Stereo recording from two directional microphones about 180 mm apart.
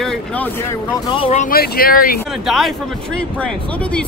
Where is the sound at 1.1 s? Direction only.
35° left (ahead or behind).